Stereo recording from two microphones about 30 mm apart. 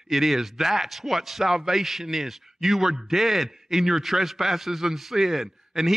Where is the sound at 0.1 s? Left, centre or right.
Centre.